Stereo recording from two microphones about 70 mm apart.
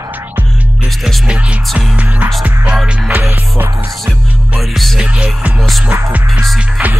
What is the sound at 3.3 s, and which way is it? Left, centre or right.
Music, right.